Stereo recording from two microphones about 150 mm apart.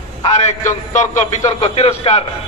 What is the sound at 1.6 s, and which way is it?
Speech, 40° left (ahead or behind).